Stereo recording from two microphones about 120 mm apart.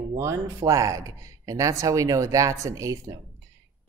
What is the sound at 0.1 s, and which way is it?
Speech, 25° right (ahead or behind).